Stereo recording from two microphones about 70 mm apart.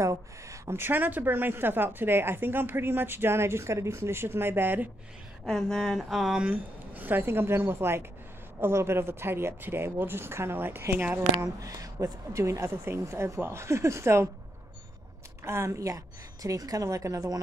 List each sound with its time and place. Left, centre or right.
0.0 s speech: right
0.7 s a woman's voice: right
5.5 s a sound: centre
6.3 s a woman's voice: centre
11.4 s a woman's voice: right
15.4 s a woman's voice: right